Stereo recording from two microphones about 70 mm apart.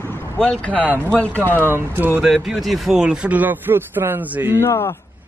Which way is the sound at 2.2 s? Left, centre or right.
Centre.